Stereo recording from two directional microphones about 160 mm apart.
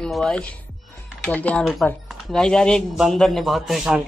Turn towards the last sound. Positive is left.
turn(degrees=0)  # may be behind; listen again after turning